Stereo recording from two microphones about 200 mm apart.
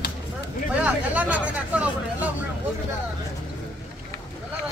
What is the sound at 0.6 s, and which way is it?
Speech, 5° right (ahead or behind).